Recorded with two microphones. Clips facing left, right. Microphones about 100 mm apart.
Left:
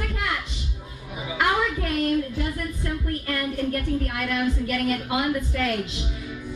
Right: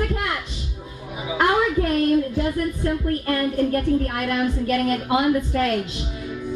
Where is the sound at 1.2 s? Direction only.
30° right (ahead or behind).